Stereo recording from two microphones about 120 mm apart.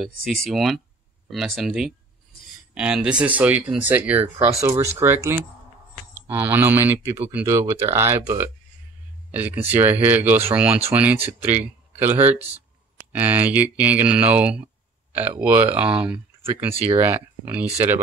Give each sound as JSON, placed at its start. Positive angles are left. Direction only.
{"t": 0.0, "sound": "speech", "side_deg": 0}